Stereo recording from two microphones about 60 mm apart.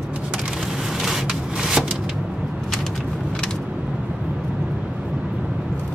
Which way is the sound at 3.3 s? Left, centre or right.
Centre.